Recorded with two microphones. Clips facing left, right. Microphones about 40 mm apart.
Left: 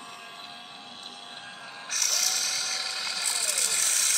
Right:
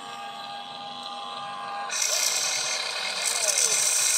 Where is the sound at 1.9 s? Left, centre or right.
Centre.